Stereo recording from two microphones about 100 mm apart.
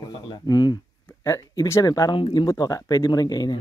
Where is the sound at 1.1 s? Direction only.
25° left (ahead or behind).